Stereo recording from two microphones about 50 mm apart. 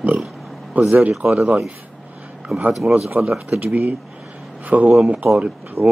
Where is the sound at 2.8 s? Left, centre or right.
Centre.